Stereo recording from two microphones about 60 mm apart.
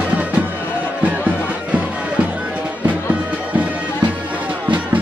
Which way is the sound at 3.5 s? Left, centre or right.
Right.